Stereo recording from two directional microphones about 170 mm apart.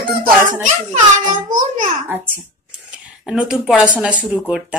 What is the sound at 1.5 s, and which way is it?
Speech, 50° right (ahead or behind).